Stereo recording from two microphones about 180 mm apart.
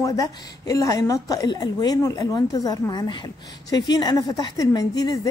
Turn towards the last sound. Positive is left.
turn(degrees=20)  # may be behind; listen again after turning